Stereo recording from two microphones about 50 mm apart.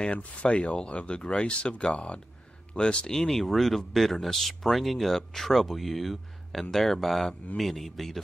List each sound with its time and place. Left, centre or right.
0.1 s speech: left
3.2 s speech: centre